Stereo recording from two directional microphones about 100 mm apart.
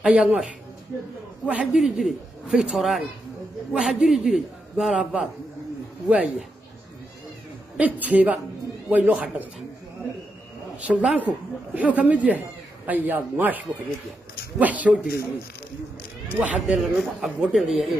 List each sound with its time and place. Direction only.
0.0 s a man's voice: 10° right (ahead or behind)
7.7 s speech: 15° right (ahead or behind)
10.8 s speech: 15° right (ahead or behind)
16.3 s a man's voice: 10° right (ahead or behind)